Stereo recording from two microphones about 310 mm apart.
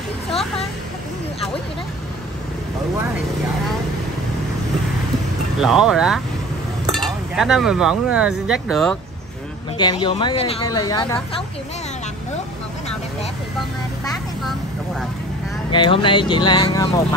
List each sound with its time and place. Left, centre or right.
5.6 s speech: centre
9.8 s speech: centre
15.7 s speech: centre